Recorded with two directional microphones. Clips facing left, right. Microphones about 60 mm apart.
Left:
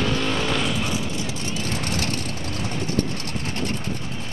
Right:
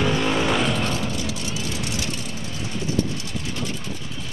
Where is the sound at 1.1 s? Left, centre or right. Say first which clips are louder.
Even; left.